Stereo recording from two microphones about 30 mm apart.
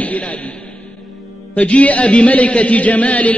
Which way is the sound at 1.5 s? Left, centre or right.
Left.